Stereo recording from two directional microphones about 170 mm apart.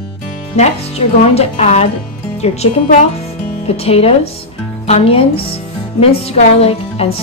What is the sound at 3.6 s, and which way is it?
A woman's voice, 35° left (ahead or behind).